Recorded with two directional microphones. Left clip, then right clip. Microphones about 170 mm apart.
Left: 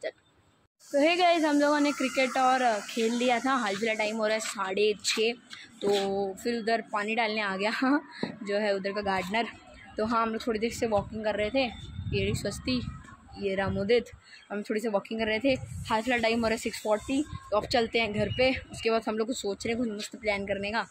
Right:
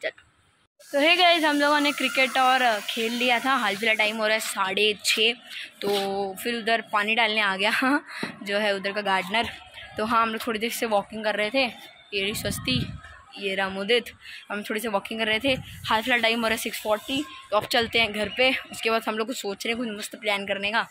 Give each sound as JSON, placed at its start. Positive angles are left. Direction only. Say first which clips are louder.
{"t": 0.9, "sound": "a woman's voice", "louder": "right 4 dB", "side_deg": 0}
{"t": 6.0, "sound": "a sound", "louder": "right 2 dB", "side_deg": -25}
{"t": 6.4, "sound": "a woman's voice", "louder": "right 6 dB", "side_deg": 0}
{"t": 12.2, "sound": "a woman's voice", "louder": "right 4 dB", "side_deg": 5}
{"t": 13.4, "sound": "a woman's voice", "louder": "right 3 dB", "side_deg": 15}